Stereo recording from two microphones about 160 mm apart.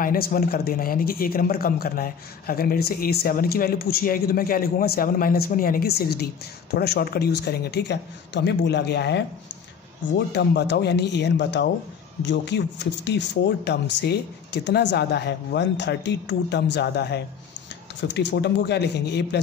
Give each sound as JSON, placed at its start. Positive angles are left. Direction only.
{"t": 0.0, "sound": "a man's voice", "side_deg": 65}